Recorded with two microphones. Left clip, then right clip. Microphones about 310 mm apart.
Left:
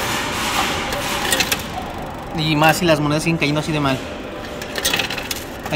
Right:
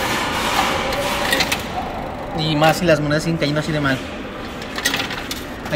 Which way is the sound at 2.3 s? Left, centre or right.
Centre.